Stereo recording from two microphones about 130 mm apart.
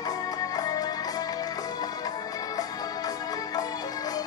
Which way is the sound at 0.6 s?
30° left (ahead or behind).